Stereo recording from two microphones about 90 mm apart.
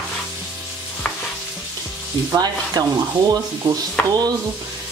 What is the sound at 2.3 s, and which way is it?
Speech, 50° right (ahead or behind).